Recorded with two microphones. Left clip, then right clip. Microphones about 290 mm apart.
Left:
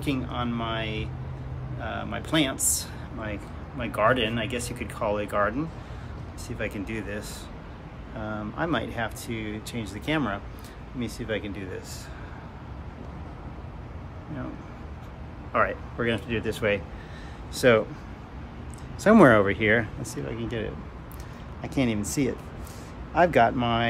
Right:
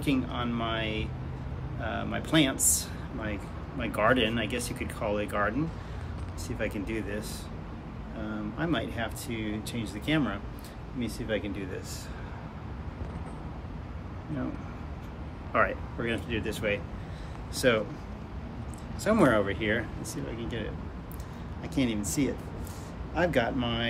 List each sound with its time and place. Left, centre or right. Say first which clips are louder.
0.0 s speech: left 1 dB; centre
6.6 s speech: left 1 dB; centre
8.3 s speech: left 4 dB; centre
15.5 s speech: left 2 dB; centre
19.0 s speech: left 7 dB; left